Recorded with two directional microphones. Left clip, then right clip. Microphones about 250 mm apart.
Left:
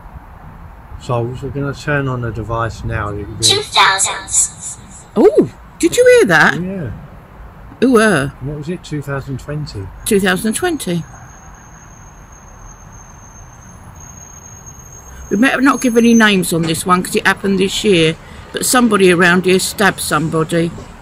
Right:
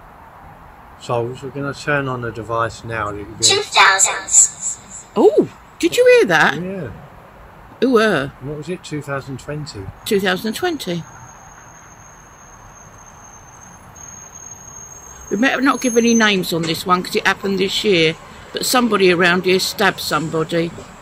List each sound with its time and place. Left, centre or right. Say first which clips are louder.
1.0 s speech: left 1 dB; centre
3.4 s a woman's voice: left 1 dB; centre
5.1 s speech: left 3 dB; centre
7.8 s speech: left 3 dB; centre
8.5 s speech: left 1 dB; centre
10.0 s speech: left 3 dB; centre
15.3 s speech: left 3 dB; centre